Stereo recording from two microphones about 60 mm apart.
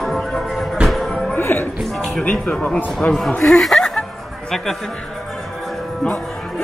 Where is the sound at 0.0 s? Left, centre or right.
Centre.